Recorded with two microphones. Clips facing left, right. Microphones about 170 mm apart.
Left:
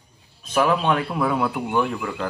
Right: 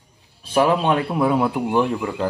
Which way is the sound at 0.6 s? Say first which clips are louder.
Right 2 dB; 20° right (ahead or behind).